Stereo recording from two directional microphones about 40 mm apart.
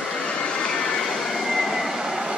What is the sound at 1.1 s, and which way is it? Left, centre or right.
Train, centre.